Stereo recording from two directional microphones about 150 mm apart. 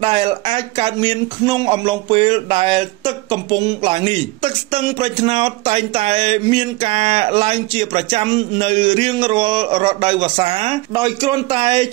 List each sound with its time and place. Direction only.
0.0 s a man's voice: 40° right (ahead or behind)